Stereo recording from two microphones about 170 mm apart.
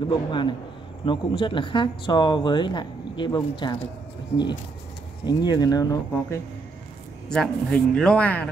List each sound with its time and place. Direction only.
0.0 s speech: 30° left (ahead or behind)
5.2 s speech: 25° left (ahead or behind)
7.2 s speech: 5° left (ahead or behind)